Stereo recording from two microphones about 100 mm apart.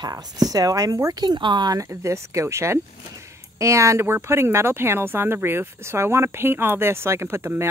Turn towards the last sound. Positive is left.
turn(degrees=-25)  # may be behind; listen again after turning